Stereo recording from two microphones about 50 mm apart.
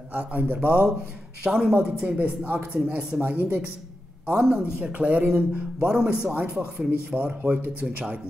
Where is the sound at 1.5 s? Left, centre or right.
Centre.